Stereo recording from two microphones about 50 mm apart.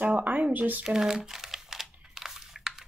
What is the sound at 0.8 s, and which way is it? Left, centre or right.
Crumpling, centre.